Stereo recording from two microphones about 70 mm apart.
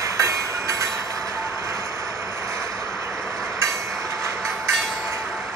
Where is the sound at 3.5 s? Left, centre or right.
Right.